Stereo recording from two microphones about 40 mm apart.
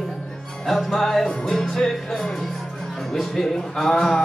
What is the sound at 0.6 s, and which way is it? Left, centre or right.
Speech, centre.